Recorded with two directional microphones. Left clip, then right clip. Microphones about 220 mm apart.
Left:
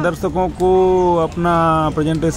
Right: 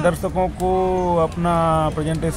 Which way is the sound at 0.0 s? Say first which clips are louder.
Left 1 dB; 10° left (ahead or behind).